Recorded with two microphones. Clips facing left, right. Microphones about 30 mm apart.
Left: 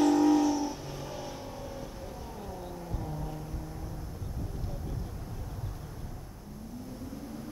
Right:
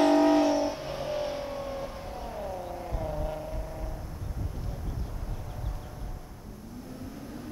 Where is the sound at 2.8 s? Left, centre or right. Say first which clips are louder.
Right 6 dB; right.